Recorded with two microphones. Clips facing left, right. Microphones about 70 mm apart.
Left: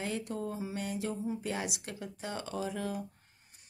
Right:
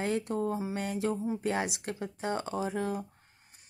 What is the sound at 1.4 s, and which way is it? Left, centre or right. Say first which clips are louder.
A woman's voice: right 5 dB; right.